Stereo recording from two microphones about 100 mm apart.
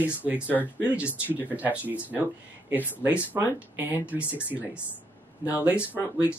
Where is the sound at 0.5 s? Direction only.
15° left (ahead or behind).